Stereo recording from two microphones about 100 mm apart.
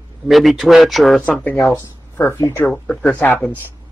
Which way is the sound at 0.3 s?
Centre (ahead or behind).